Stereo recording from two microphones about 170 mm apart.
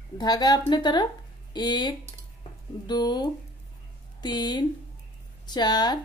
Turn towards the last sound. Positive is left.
turn(degrees=25)  # may be behind; listen again after turning